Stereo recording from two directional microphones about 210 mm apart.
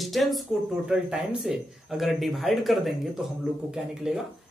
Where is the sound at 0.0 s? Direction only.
Centre (ahead or behind).